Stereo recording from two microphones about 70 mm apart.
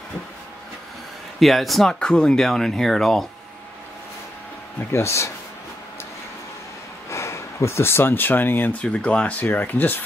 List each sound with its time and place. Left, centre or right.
1.4 s speech: centre
4.9 s speech: left
7.1 s speech: left
8.8 s speech: centre